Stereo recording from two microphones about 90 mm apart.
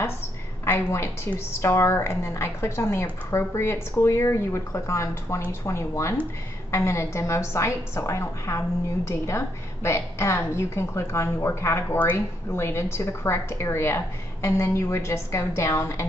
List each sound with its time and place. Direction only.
0.7 s a woman's voice: 30° left (ahead or behind)